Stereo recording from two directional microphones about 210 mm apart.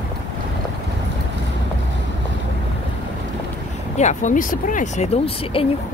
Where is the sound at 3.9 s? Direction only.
35° left (ahead or behind).